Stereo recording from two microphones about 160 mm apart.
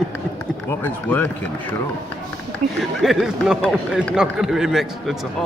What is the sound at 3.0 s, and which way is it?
A man's voice, centre (ahead or behind).